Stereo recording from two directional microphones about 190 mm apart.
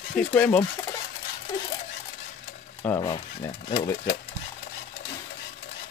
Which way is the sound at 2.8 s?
20° left (ahead or behind).